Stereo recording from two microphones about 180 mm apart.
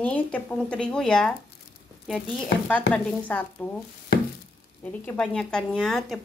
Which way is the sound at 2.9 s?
10° left (ahead or behind).